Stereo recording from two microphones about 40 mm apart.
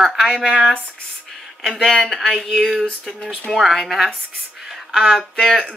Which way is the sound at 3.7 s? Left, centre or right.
Centre.